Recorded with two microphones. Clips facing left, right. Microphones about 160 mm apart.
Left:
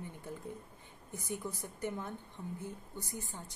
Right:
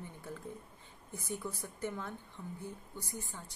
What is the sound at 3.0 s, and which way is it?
Speech, 20° right (ahead or behind).